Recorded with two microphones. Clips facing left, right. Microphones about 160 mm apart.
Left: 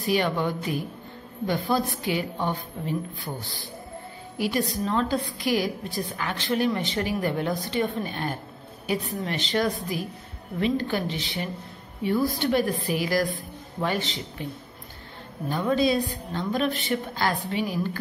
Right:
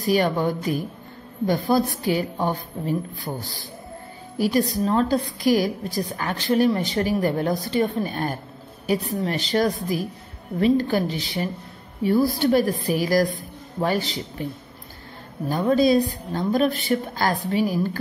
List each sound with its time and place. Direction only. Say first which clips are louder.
0.0 s a woman's voice: right 4 dB; 40° right (ahead or behind)
4.4 s a woman's voice: right 5 dB; 40° right (ahead or behind)
15.5 s a woman's voice: right 5 dB; 40° right (ahead or behind)